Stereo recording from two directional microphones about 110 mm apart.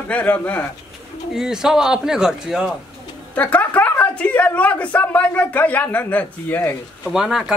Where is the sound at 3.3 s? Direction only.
15° left (ahead or behind).